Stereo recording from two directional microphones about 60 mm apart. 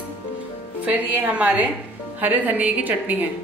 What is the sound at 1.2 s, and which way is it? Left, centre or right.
A woman's voice, right.